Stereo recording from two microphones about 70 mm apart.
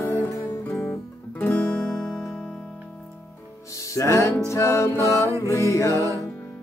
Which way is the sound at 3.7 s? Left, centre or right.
Left.